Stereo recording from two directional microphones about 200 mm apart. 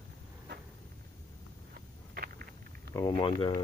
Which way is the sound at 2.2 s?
50° right (ahead or behind).